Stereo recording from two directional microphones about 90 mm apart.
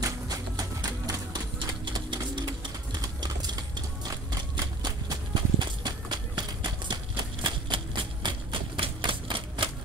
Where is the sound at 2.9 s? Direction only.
50° right (ahead or behind).